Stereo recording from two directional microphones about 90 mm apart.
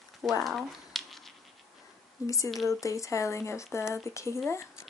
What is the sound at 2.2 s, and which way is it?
Speech, 35° left (ahead or behind).